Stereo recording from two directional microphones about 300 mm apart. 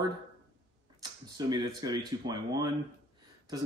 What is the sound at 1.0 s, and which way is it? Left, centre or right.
Speech, centre.